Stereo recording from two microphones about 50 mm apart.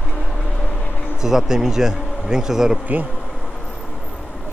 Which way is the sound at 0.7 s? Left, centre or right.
Left.